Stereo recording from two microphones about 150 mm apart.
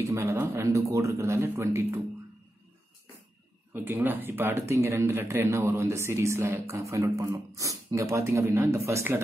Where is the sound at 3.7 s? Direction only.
15° right (ahead or behind).